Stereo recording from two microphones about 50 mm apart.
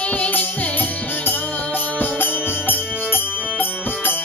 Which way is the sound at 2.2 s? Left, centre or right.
Left.